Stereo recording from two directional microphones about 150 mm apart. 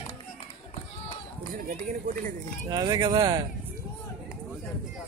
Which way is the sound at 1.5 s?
70° right (ahead or behind).